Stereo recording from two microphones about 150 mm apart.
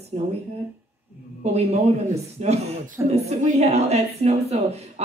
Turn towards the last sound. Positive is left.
turn(degrees=-45)  # may be behind; listen again after turning